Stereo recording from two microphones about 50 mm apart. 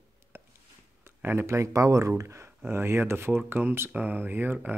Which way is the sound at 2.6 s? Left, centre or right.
Right.